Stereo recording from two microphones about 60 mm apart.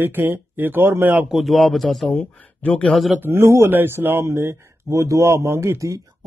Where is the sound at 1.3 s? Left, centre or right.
Centre.